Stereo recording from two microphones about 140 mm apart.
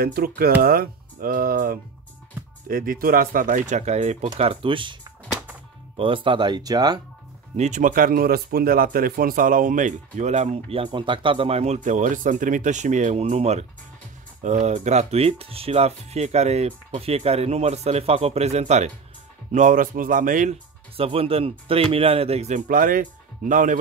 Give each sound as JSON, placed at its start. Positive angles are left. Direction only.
{"t": 0.0, "sound": "speech", "side_deg": -90}
{"t": 5.9, "sound": "speech", "side_deg": -40}
{"t": 7.5, "sound": "speech", "side_deg": -60}
{"t": 19.5, "sound": "a man's voice", "side_deg": -65}
{"t": 20.9, "sound": "speech", "side_deg": -45}
{"t": 22.7, "sound": "speech", "side_deg": -80}